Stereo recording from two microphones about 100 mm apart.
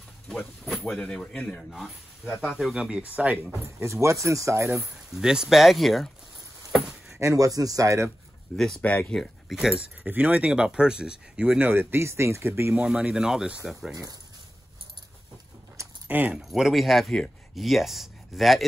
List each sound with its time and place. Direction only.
0.7 s speech: centre (ahead or behind)
3.6 s speech: 30° right (ahead or behind)
4.9 s speech: 5° right (ahead or behind)
7.1 s speech: 30° right (ahead or behind)
8.5 s speech: 5° left (ahead or behind)
10.0 s speech: 15° right (ahead or behind)
12.7 s speech: 10° right (ahead or behind)
16.1 s speech: 15° right (ahead or behind)
16.3 s speech: 5° right (ahead or behind)